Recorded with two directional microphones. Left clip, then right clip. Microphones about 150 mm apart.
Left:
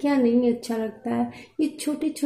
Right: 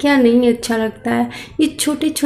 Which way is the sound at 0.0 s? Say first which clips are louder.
Right 9 dB; 5° left (ahead or behind).